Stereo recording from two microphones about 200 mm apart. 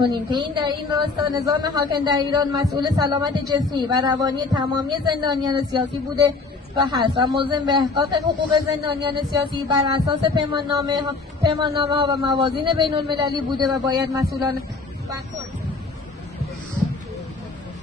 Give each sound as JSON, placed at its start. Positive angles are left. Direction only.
{"t": 0.1, "sound": "speech", "side_deg": -20}